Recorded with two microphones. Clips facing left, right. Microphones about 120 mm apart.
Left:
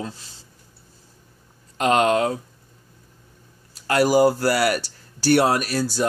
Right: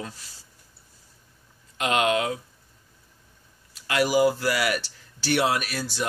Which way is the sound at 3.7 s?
40° left (ahead or behind).